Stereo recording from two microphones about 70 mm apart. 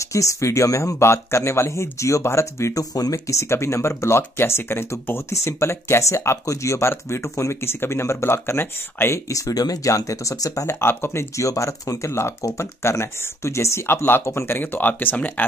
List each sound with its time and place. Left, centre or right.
0.0 s speech: left
2.8 s speech: left
9.3 s speech: left
11.3 s speech: left